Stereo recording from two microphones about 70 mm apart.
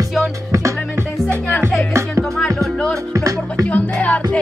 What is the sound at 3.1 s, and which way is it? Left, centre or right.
Music, right.